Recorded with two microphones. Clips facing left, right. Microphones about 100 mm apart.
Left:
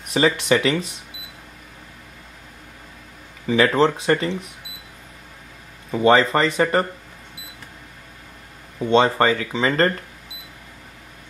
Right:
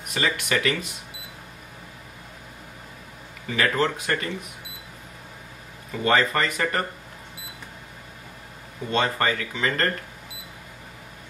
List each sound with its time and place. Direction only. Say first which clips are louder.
0.1 s speech: left 7 dB; 30° left (ahead or behind)
3.5 s speech: left 6 dB; 30° left (ahead or behind)
5.9 s speech: left 6 dB; 30° left (ahead or behind)
8.9 s speech: left 7 dB; 30° left (ahead or behind)